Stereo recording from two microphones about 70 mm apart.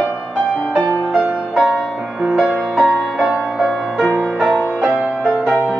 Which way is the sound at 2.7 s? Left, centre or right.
Centre.